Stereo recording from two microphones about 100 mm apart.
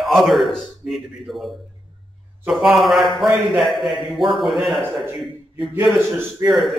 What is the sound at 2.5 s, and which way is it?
A man's voice, centre (ahead or behind).